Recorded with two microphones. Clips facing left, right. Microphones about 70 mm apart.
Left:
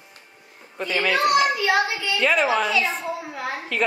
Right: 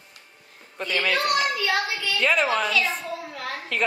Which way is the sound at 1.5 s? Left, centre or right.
Left.